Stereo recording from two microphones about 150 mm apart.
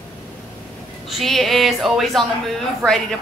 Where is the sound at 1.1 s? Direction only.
Centre (ahead or behind).